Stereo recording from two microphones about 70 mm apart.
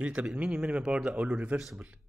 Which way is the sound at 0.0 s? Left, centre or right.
Centre.